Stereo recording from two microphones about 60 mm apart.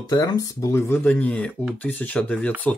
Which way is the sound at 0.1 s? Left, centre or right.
Left.